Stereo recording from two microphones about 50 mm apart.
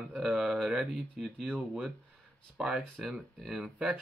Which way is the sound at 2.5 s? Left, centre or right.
Centre.